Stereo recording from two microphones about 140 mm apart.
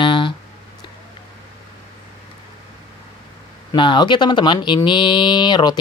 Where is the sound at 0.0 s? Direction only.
35° left (ahead or behind).